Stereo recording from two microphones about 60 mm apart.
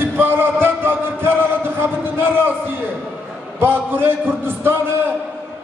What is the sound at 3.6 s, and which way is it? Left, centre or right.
Speech, right.